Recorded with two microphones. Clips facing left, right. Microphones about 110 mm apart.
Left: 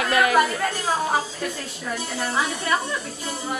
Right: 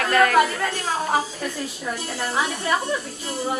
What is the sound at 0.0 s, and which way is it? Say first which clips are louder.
Speech: right 2 dB; 10° left (ahead or behind).